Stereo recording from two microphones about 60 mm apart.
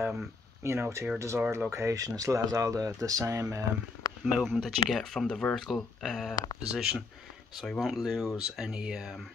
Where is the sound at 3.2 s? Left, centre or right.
Right.